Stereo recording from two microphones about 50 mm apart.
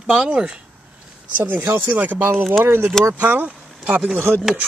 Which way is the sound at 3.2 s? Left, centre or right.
Right.